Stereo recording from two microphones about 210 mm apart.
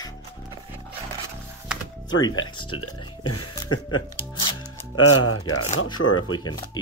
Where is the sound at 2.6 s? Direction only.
90° left.